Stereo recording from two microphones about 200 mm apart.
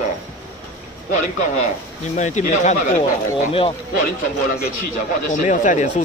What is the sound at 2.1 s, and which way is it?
Speech, 35° left (ahead or behind).